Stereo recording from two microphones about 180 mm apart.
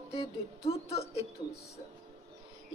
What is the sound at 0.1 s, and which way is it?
Speech, 35° left (ahead or behind).